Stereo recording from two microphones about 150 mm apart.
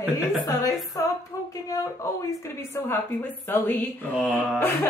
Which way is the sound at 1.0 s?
20° left (ahead or behind).